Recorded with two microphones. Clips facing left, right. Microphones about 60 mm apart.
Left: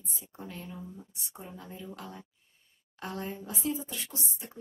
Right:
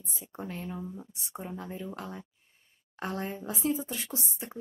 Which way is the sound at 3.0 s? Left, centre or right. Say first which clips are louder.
Right 3 dB; right.